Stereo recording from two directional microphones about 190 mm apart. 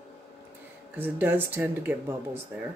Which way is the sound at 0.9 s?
10° right (ahead or behind).